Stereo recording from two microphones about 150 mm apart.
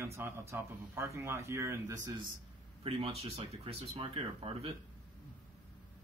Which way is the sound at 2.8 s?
40° right (ahead or behind).